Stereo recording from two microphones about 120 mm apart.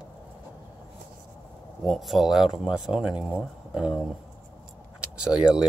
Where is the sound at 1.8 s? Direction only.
Centre (ahead or behind).